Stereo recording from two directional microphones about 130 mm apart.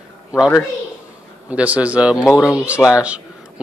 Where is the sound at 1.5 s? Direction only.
10° right (ahead or behind).